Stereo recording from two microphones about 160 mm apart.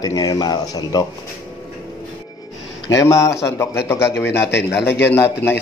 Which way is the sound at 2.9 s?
20° left (ahead or behind).